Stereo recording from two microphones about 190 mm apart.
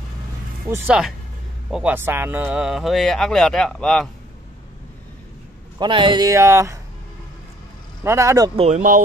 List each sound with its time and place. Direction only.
0.7 s speech: 5° right (ahead or behind)
5.8 s speech: 25° right (ahead or behind)
8.0 s speech: 15° right (ahead or behind)
8.5 s speech: 35° right (ahead or behind)